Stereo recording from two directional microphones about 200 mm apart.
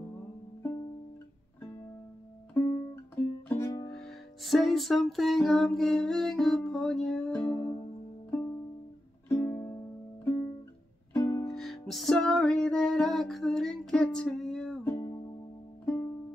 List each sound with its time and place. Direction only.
2.5 s music: 15° left (ahead or behind)
3.9 s music: centre (ahead or behind)
9.3 s music: 10° left (ahead or behind)
11.5 s music: centre (ahead or behind)
15.8 s music: 10° left (ahead or behind)